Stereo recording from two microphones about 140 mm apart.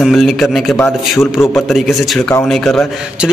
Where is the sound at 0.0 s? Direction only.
Centre (ahead or behind).